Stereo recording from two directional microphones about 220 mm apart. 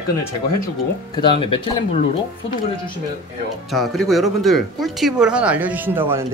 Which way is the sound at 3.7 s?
Centre (ahead or behind).